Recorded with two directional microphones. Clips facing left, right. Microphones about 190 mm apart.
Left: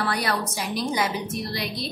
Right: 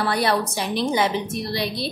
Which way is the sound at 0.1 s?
30° right (ahead or behind).